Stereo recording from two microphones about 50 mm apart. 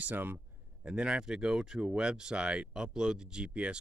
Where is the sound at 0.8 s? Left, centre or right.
Centre.